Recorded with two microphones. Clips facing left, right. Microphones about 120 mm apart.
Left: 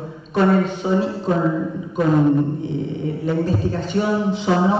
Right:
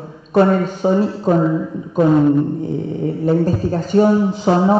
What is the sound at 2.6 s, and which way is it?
A man's voice, 40° right (ahead or behind).